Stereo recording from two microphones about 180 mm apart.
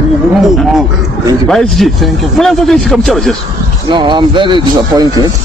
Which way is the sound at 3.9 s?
25° right (ahead or behind).